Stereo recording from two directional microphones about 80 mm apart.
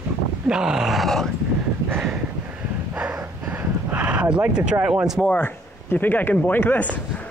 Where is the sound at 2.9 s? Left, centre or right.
Centre.